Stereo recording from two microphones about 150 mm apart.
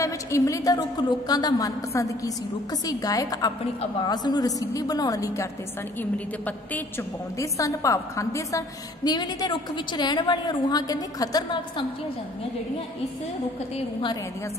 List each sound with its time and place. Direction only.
0.0 s a woman's voice: 20° left (ahead or behind)
5.9 s a woman's voice: 10° left (ahead or behind); by 11.8 s 30° left (ahead or behind)